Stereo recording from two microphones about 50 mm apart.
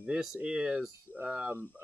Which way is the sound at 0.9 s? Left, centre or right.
Right.